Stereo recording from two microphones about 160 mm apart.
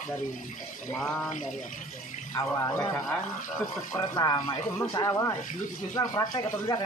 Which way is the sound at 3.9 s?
25° left (ahead or behind).